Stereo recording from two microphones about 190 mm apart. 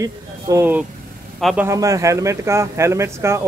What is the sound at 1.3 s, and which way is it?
Speech, centre (ahead or behind).